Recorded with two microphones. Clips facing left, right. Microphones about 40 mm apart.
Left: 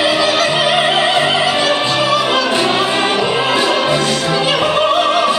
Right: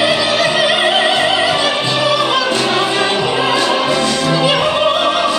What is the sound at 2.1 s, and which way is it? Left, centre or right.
Music, centre.